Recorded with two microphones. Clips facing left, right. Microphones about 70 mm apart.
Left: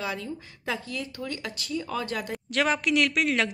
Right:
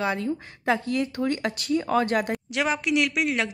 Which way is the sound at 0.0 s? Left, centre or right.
Right.